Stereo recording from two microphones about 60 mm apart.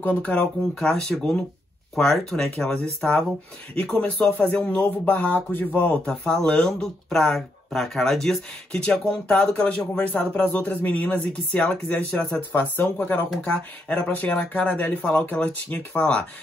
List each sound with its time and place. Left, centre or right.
0.0 s speech: left
6.0 s speech: centre
9.9 s speech: left
12.5 s speech: left
13.5 s speech: centre